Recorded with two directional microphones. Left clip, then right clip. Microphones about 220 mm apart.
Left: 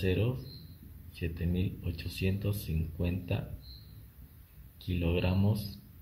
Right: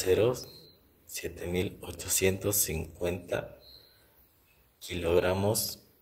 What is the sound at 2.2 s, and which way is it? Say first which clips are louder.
Speech: right 9 dB; 25° right (ahead or behind).